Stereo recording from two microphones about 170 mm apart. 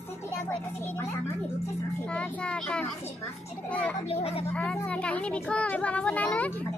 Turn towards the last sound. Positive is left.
turn(degrees=10)  # may be behind; listen again after turning